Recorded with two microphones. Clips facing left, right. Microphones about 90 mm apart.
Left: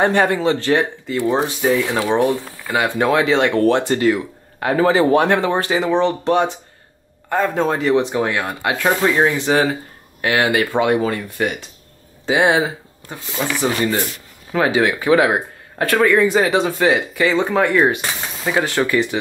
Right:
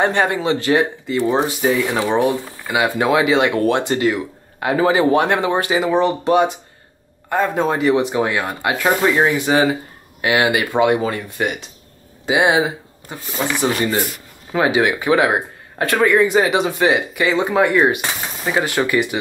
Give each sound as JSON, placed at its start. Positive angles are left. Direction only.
{"t": 0.0, "sound": "speech", "side_deg": -20}
{"t": 1.3, "sound": "speech", "side_deg": 0}
{"t": 9.2, "sound": "speech", "side_deg": -15}